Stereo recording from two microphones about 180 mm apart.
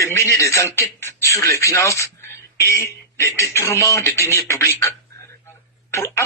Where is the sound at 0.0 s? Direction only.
15° left (ahead or behind).